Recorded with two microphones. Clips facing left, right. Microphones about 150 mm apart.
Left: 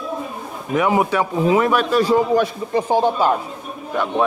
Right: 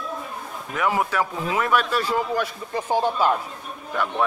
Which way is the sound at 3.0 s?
25° left (ahead or behind).